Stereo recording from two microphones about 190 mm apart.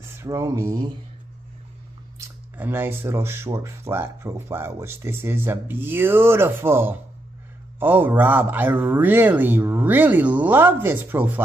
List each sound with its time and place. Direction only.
0.2 s speech: 15° right (ahead or behind)
2.1 s speech: 10° right (ahead or behind)